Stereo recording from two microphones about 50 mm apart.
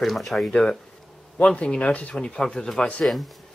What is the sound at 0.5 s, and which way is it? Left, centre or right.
Speech, centre.